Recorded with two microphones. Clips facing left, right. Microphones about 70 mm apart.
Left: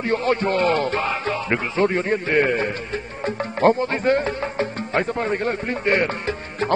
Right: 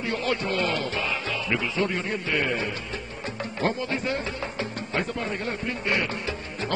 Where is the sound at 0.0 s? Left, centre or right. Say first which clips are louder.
Left 7 dB; left.